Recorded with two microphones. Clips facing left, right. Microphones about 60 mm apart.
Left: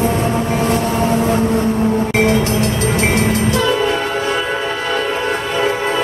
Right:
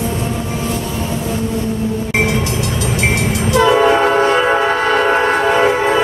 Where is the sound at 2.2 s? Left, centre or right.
Left.